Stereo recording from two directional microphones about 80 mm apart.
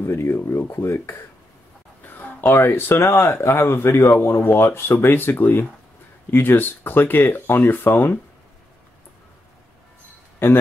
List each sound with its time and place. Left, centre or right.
0.0 s speech: left
10.4 s a man's voice: left